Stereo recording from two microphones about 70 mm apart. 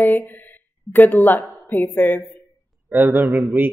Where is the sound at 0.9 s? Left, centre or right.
Left.